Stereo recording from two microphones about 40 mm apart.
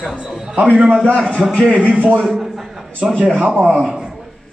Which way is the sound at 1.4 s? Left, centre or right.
Centre.